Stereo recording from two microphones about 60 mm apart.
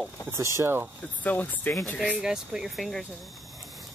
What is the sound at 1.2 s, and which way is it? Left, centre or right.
Speech, left.